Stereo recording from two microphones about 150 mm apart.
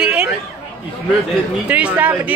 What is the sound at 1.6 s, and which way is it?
Speech, 10° right (ahead or behind).